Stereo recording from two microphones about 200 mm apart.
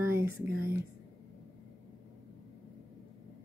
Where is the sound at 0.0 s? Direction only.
10° right (ahead or behind).